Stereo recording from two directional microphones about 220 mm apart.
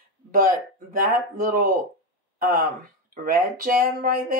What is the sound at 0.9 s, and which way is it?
Speech, 40° right (ahead or behind).